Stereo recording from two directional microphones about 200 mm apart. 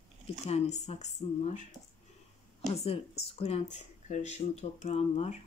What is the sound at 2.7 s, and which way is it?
Speech, 30° left (ahead or behind).